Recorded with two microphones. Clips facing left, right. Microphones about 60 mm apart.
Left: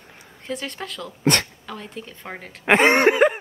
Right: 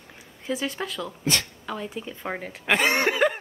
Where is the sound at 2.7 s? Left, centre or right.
Left.